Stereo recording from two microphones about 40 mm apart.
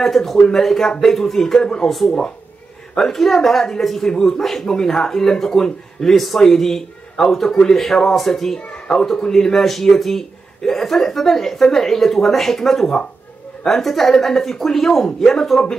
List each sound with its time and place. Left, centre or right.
0.0 s a man's voice: centre
8.5 s a sound: left
8.9 s a man's voice: centre